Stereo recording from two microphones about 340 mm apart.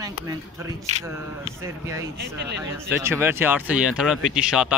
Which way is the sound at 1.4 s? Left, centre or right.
Centre.